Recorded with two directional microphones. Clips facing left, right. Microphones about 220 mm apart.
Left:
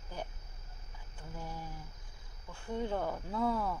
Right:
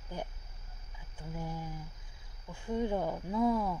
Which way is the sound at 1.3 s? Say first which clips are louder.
Right 4 dB; 15° right (ahead or behind).